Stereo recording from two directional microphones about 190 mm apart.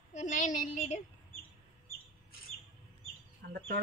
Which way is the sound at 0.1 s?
40° left (ahead or behind).